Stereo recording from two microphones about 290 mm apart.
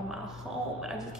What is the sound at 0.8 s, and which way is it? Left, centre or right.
Speech, centre.